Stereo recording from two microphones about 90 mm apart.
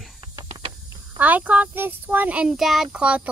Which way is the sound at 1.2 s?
20° right (ahead or behind).